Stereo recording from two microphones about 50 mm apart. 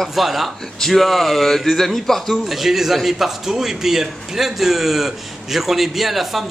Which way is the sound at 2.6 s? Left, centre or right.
Centre.